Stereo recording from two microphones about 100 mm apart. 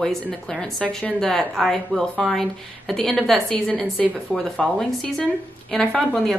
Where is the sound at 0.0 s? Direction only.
5° left (ahead or behind).